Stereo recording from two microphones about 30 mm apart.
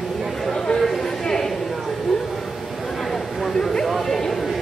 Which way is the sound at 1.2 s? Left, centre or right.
Centre.